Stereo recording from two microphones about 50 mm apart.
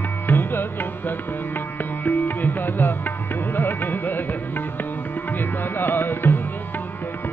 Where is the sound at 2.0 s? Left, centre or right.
Left.